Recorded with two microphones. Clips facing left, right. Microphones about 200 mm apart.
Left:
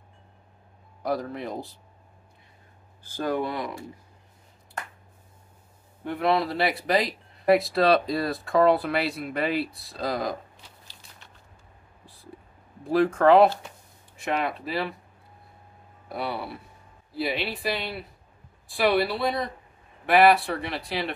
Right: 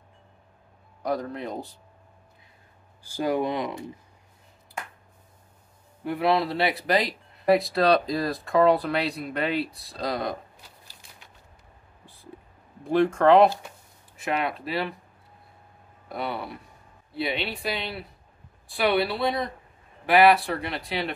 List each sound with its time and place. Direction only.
1.0 s speech: centre (ahead or behind)
3.0 s speech: 15° right (ahead or behind)
6.0 s speech: 5° right (ahead or behind)
12.9 s speech: centre (ahead or behind)
16.1 s speech: centre (ahead or behind)